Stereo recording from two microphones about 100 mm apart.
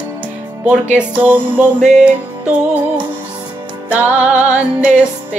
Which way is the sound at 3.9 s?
15° right (ahead or behind).